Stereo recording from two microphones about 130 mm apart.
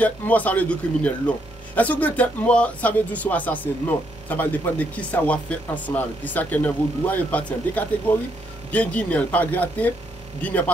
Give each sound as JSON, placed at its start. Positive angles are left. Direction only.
{"t": 0.0, "sound": "speech", "side_deg": 10}